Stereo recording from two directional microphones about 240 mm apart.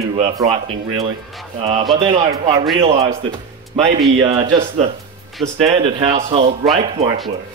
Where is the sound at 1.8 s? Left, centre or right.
Centre.